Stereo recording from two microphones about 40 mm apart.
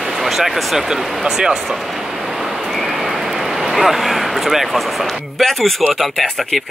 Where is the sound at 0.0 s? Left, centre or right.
Centre.